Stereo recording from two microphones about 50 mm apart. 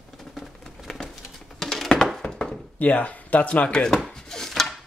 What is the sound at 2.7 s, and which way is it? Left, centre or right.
Speech, left.